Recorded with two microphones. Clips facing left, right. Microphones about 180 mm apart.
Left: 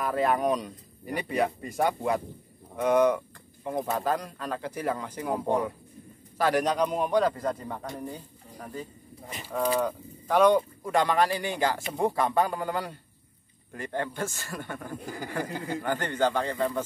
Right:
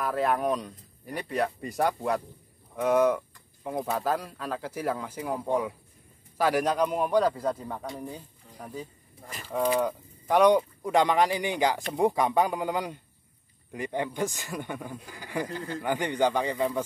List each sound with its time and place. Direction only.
0.0 s speech: centre (ahead or behind)
6.3 s speech: 10° right (ahead or behind)
15.0 s speech: 45° left (ahead or behind)
15.8 s speech: 15° right (ahead or behind)